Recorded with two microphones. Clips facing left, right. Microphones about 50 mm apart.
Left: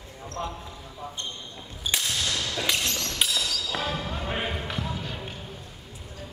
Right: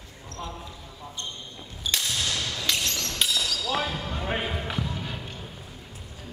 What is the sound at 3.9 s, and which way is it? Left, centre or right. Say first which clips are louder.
Basketball bounce: even; centre.